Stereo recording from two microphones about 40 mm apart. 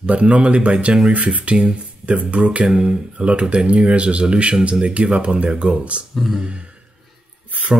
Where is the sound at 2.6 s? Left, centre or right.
Right.